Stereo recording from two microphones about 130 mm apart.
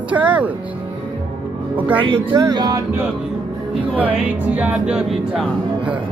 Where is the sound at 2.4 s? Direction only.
30° right (ahead or behind).